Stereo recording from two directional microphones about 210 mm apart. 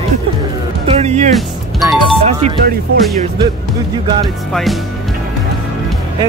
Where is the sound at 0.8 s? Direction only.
30° right (ahead or behind).